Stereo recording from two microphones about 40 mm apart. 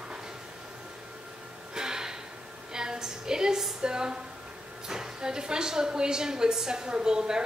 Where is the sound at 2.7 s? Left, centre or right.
Centre.